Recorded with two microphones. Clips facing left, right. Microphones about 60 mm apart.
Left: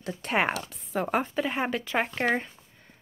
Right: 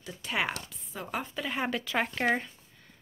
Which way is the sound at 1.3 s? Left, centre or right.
Left.